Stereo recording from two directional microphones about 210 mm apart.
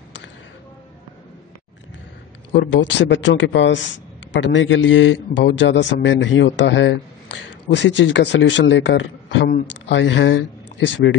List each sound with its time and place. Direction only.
2.5 s a man's voice: 60° left (ahead or behind)